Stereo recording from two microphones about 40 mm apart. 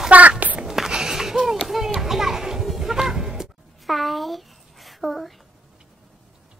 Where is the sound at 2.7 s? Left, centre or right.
Centre.